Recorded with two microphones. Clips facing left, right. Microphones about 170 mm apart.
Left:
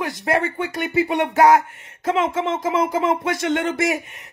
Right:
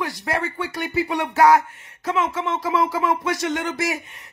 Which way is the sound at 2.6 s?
20° left (ahead or behind).